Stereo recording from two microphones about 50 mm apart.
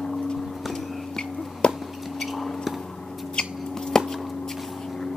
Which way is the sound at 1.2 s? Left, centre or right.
Centre.